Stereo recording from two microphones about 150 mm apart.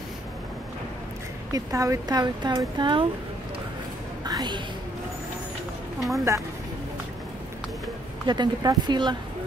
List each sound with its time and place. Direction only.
1.5 s speech: 25° right (ahead or behind)
4.2 s music: 30° right (ahead or behind)
6.1 s speech: 20° right (ahead or behind)
8.3 s speech: 30° right (ahead or behind)